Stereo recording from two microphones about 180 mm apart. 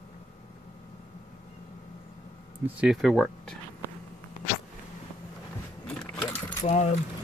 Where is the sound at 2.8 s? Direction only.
5° right (ahead or behind).